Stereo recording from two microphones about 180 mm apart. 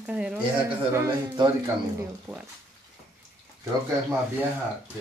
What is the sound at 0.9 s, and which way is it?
Speech, 15° right (ahead or behind).